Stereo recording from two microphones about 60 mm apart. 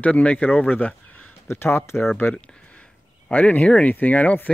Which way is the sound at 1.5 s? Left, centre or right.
Left.